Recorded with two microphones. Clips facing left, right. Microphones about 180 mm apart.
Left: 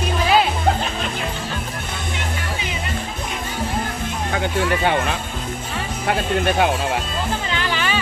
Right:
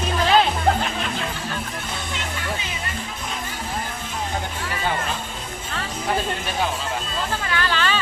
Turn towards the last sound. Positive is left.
turn(degrees=15)  # may be behind; listen again after turning